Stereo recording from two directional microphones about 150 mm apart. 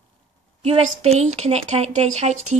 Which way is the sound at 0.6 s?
45° right (ahead or behind).